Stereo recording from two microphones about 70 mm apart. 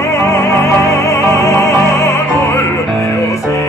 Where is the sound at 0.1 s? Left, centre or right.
Left.